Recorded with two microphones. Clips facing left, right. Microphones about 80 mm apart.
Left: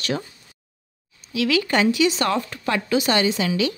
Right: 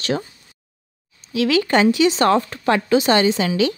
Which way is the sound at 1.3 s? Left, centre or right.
Right.